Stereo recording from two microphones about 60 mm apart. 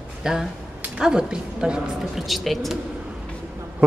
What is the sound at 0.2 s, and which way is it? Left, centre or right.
A woman's voice, centre.